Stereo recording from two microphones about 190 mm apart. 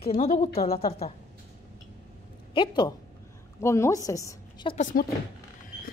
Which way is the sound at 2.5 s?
25° left (ahead or behind).